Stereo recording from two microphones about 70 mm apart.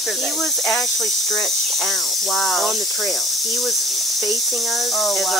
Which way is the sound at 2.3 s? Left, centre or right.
Centre.